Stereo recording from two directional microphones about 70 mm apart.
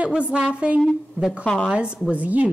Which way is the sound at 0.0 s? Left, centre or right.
Centre.